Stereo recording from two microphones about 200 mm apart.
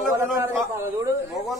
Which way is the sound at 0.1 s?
15° right (ahead or behind).